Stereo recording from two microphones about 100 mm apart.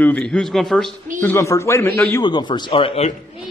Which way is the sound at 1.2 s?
25° left (ahead or behind).